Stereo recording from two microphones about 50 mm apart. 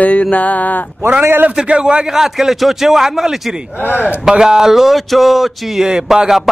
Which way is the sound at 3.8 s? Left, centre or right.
Left.